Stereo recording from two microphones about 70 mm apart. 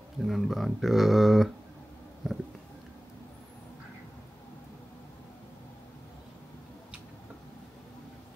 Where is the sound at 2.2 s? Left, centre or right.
Centre.